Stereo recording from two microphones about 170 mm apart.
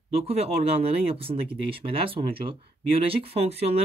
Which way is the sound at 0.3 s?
35° right (ahead or behind).